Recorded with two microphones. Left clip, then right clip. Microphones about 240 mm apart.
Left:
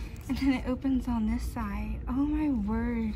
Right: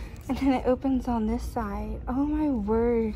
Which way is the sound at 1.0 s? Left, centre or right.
Centre.